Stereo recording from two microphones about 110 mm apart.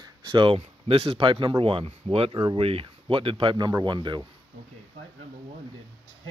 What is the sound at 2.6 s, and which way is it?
Speech, 60° right (ahead or behind).